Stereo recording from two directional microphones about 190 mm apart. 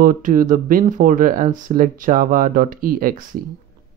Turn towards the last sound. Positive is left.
turn(degrees=-45)  # may be behind; listen again after turning